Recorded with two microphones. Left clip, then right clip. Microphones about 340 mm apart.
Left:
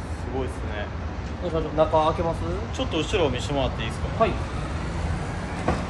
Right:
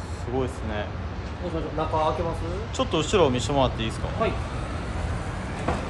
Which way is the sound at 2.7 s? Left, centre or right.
Centre.